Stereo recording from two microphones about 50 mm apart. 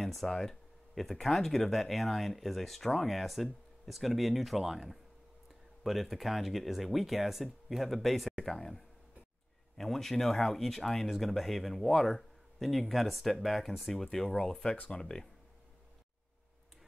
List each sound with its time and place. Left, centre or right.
0.0 s speech: centre